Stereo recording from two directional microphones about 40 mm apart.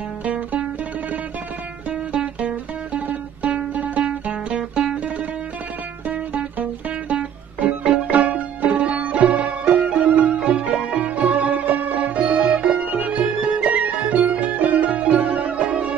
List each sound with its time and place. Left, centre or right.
0.2 s music: right
1.9 s music: right
6.0 s music: right
12.2 s music: right